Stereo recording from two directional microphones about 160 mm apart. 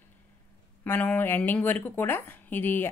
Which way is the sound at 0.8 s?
10° left (ahead or behind).